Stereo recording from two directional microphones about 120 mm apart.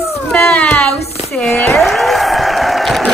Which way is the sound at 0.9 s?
60° left (ahead or behind).